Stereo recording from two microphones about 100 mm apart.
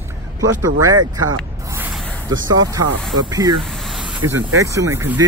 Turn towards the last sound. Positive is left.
turn(degrees=-30)  # may be behind; listen again after turning